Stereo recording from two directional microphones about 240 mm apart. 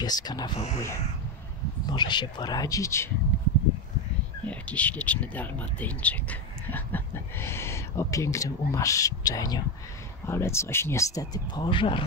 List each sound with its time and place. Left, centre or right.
0.0 s speech: centre
4.5 s speech: centre